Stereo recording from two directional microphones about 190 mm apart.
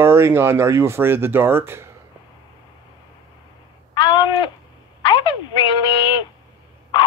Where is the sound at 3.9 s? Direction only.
25° left (ahead or behind).